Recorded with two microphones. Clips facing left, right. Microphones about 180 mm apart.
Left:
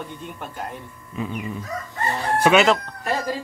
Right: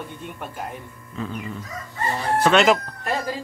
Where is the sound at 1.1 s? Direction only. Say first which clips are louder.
Left 2 dB; 15° left (ahead or behind).